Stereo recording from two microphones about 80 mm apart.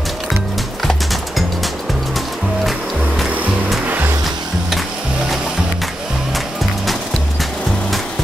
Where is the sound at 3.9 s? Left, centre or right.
Right.